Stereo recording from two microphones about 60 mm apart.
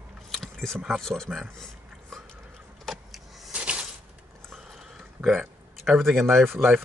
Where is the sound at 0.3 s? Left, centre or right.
Centre.